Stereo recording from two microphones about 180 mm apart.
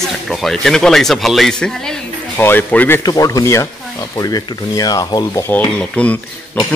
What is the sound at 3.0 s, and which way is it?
Speech, 20° left (ahead or behind).